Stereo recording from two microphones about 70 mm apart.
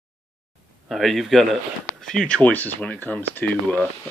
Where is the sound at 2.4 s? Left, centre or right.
Left.